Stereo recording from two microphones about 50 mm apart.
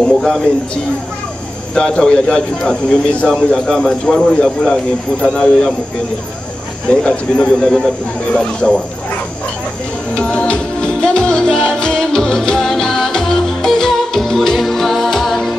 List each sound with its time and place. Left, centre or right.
0.0 s speech: centre
1.8 s a man's voice: centre
6.9 s a man's voice: centre
10.1 s music: left; by 15.5 s centre